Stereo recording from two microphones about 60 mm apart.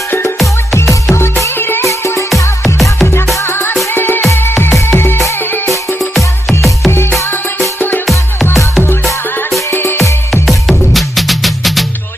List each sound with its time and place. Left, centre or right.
1.1 s music: left
1.9 s music: left
2.6 s music: centre
3.4 s music: left
6.9 s music: left
9.7 s music: left
10.7 s music: centre